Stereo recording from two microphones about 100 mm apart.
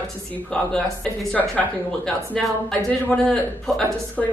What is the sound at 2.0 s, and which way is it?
A woman's voice, 5° left (ahead or behind).